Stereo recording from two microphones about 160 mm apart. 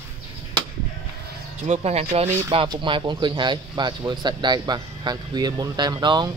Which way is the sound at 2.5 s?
30° right (ahead or behind).